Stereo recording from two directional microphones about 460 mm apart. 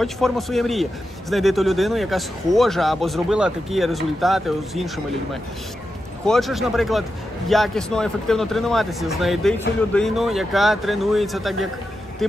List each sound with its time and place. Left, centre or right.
0.0 s a man's voice: centre